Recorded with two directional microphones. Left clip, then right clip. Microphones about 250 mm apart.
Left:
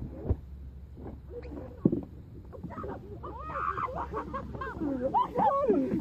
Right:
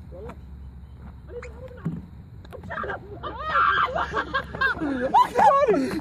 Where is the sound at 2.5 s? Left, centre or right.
Right.